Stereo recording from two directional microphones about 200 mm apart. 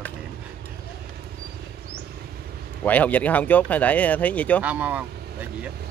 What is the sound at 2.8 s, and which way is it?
Speech, 10° left (ahead or behind).